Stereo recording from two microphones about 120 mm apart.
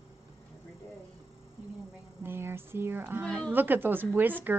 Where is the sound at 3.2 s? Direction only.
5° left (ahead or behind).